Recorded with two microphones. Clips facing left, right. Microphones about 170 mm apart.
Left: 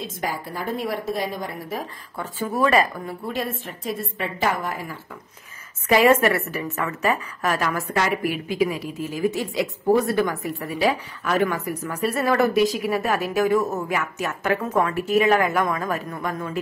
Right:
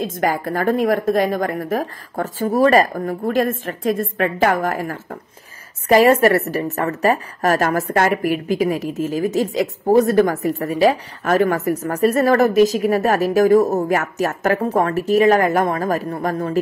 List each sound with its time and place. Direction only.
0.0 s a woman's voice: 50° right (ahead or behind)